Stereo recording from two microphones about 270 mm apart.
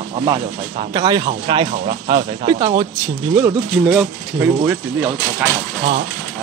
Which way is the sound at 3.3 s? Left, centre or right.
Centre.